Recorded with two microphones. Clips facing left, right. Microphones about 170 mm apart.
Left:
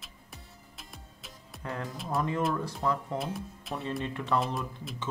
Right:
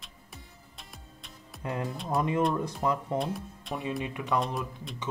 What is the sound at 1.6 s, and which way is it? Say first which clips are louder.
Speech: right 3 dB; 15° right (ahead or behind).